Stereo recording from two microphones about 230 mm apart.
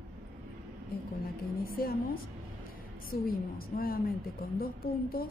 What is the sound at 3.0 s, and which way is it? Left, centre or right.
A woman's voice, left.